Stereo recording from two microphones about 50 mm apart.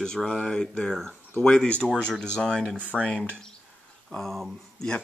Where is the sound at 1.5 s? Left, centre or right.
Centre.